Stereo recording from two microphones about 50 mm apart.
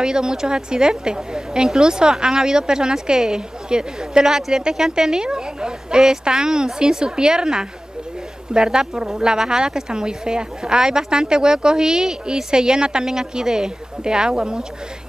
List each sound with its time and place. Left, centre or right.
0.0 s a woman's voice: centre